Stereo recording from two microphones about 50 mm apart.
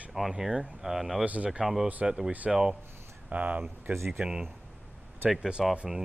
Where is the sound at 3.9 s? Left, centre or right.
Right.